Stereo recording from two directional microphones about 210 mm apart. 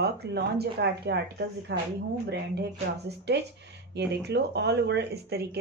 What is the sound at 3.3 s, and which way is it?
Speech, 55° right (ahead or behind).